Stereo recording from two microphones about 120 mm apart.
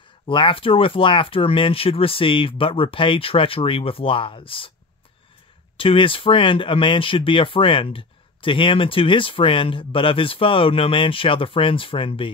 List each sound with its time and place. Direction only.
0.3 s speech: 45° left (ahead or behind)
5.8 s speech: 45° left (ahead or behind)